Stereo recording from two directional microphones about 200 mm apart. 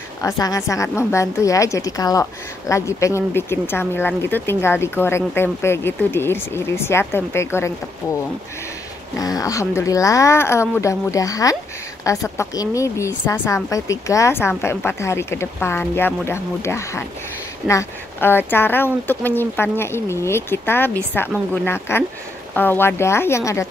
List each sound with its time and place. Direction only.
0.2 s speech: 15° left (ahead or behind)
9.2 s speech: 15° left (ahead or behind)